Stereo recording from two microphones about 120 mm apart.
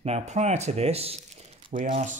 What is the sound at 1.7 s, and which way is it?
Speech, 90° right.